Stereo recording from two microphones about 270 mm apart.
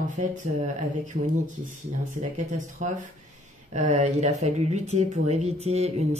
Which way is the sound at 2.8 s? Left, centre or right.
Right.